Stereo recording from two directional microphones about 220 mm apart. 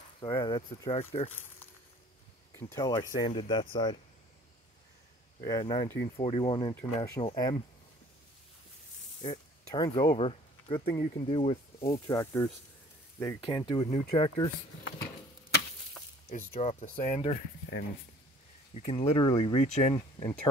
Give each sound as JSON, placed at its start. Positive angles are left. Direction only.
{"t": 0.2, "sound": "speech", "side_deg": 20}
{"t": 2.6, "sound": "speech", "side_deg": 15}
{"t": 5.4, "sound": "speech", "side_deg": 20}
{"t": 9.2, "sound": "speech", "side_deg": 20}
{"t": 12.1, "sound": "speech", "side_deg": 10}
{"t": 13.7, "sound": "speech", "side_deg": 30}
{"t": 16.3, "sound": "speech", "side_deg": 30}
{"t": 18.7, "sound": "speech", "side_deg": 30}